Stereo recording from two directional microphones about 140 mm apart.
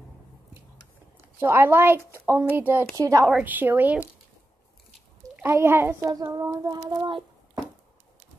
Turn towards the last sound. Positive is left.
turn(degrees=-30)  # may be behind; listen again after turning